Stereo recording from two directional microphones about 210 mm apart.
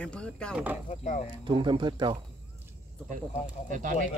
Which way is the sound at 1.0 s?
30° left (ahead or behind).